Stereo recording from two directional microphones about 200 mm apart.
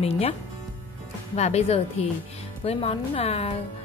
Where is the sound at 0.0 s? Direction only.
30° left (ahead or behind).